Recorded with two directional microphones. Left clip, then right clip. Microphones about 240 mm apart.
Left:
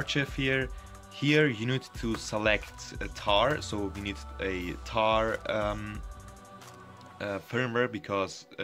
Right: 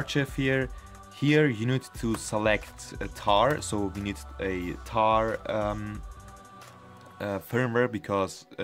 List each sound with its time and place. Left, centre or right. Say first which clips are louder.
0.0 s speech: right 1 dB; centre
7.2 s speech: right 3 dB; centre